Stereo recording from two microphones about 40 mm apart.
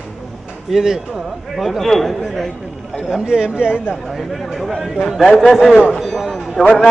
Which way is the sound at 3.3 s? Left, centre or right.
Right.